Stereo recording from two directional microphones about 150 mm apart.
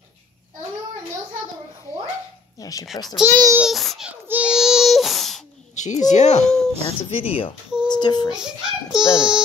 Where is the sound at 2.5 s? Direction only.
25° left (ahead or behind).